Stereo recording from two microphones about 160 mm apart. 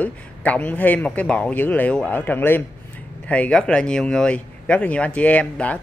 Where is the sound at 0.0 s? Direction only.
10° left (ahead or behind).